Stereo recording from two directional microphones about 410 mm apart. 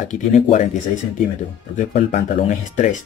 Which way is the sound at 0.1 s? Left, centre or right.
Centre.